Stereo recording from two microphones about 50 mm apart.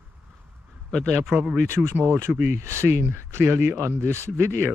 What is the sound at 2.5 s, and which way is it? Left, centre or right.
Speech, right.